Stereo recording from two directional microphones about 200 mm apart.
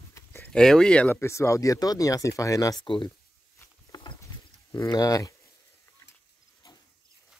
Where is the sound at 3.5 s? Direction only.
20° left (ahead or behind).